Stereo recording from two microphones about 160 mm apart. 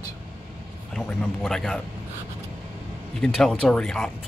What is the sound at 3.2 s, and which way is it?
Speech, 5° left (ahead or behind).